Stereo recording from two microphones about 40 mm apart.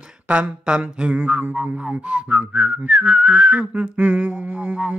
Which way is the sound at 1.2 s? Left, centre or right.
Right.